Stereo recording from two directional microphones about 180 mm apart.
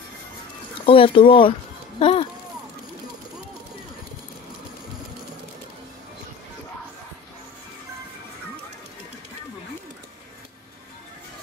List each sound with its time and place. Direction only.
0.8 s speech: 30° left (ahead or behind)